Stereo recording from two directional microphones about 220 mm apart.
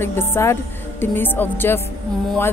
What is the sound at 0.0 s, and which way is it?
Speech, 10° left (ahead or behind).